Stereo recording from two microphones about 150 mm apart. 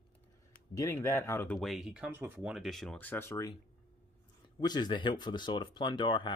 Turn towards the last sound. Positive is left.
turn(degrees=30)  # may be behind; listen again after turning